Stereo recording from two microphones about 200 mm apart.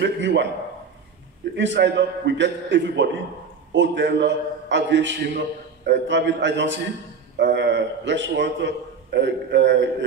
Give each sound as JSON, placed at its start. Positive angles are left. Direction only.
{"t": 0.0, "sound": "a man's voice", "side_deg": -60}
{"t": 1.6, "sound": "a man's voice", "side_deg": -60}